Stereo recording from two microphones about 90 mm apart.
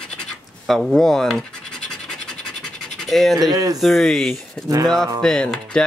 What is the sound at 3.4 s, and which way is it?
Speech, 45° right (ahead or behind).